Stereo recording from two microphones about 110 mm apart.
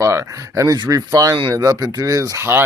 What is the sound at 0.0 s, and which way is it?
A man's voice, 25° right (ahead or behind).